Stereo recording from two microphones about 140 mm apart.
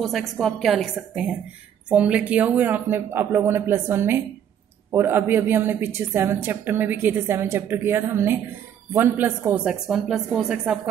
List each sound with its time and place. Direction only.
0.0 s a woman's voice: centre (ahead or behind); by 9.6 s 15° right (ahead or behind)
9.7 s a woman's voice: 5° right (ahead or behind)